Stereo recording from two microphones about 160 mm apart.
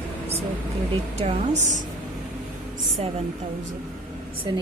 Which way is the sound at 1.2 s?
40° right (ahead or behind).